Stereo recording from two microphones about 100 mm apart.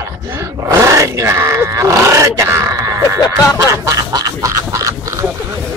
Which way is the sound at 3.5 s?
30° right (ahead or behind).